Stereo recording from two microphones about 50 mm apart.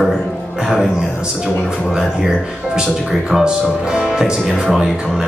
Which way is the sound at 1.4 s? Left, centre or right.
Centre.